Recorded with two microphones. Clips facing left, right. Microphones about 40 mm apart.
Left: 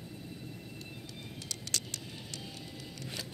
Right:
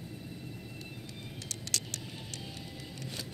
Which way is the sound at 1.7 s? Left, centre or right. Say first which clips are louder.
Right 1 dB; right.